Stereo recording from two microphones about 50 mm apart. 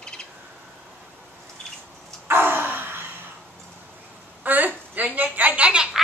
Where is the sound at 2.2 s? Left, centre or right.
Right.